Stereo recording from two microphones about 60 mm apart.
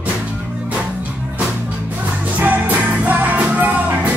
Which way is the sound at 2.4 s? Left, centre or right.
Right.